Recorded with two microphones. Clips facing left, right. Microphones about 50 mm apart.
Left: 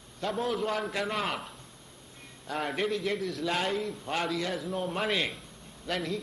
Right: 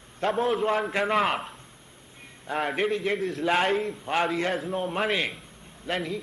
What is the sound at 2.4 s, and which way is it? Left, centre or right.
A man's voice, right.